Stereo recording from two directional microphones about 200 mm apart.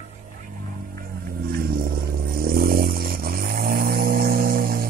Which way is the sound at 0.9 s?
45° right (ahead or behind).